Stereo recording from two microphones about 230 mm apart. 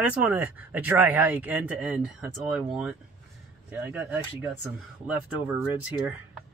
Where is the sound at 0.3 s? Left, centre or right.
Centre.